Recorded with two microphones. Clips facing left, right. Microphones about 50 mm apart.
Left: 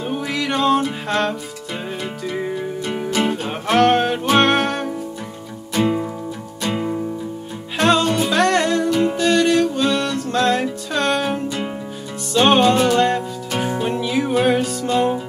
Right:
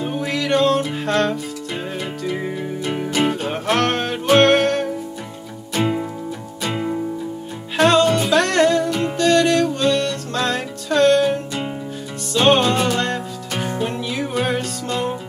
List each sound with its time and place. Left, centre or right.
0.1 s music: centre